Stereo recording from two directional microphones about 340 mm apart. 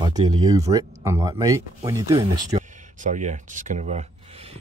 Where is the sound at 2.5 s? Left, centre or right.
Right.